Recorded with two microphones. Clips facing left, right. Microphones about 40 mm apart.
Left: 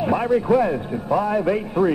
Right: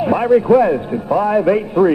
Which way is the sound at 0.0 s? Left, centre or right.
Right.